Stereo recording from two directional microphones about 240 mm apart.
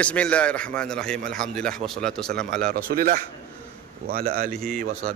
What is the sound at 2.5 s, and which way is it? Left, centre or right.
A man's voice, right.